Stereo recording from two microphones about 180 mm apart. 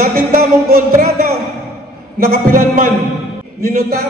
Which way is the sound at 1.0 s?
60° right (ahead or behind).